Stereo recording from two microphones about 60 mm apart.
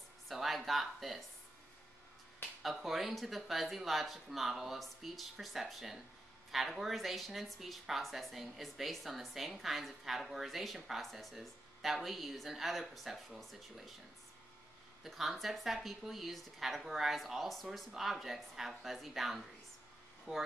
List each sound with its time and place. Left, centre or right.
0.3 s speech: centre
2.6 s speech: centre
15.0 s speech: centre
20.3 s speech: centre